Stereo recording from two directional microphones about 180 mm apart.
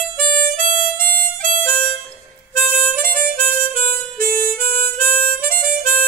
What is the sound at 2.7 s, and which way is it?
Harmonica, 50° right (ahead or behind).